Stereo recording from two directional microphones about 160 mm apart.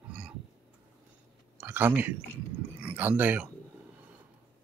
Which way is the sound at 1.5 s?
10° right (ahead or behind).